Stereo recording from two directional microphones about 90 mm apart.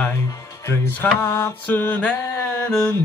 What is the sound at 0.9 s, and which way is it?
Mantra, 30° left (ahead or behind).